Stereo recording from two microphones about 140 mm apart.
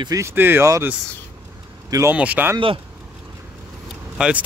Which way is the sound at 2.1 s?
10° right (ahead or behind).